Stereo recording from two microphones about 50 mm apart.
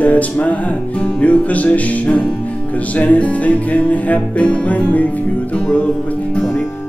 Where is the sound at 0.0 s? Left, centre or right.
Left.